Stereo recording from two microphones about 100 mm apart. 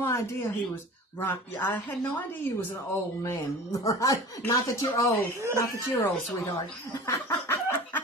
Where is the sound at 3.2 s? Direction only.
35° left (ahead or behind).